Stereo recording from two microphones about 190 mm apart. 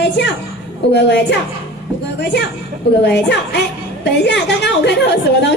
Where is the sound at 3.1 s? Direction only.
65° left (ahead or behind).